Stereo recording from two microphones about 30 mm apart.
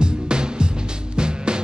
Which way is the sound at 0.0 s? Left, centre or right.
Right.